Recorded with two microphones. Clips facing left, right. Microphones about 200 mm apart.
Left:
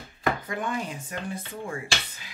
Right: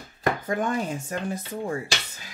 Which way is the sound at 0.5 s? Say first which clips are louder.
Right 5 dB; 45° right (ahead or behind).